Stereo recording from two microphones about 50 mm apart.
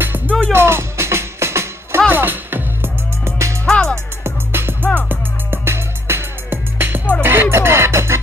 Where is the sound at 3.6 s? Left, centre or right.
Centre.